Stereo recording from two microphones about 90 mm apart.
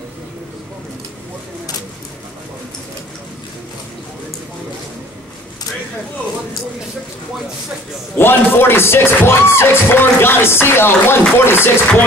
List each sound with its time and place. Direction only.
8.2 s speech: 25° left (ahead or behind)